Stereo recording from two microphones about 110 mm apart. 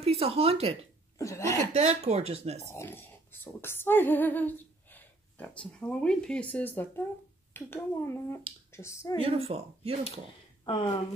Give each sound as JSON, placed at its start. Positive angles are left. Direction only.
{"t": 0.0, "sound": "speech", "side_deg": -65}
{"t": 1.1, "sound": "speech", "side_deg": 25}
{"t": 1.7, "sound": "speech", "side_deg": -85}
{"t": 2.7, "sound": "speech", "side_deg": 20}
{"t": 9.2, "sound": "speech", "side_deg": -60}
{"t": 10.6, "sound": "a sound", "side_deg": 45}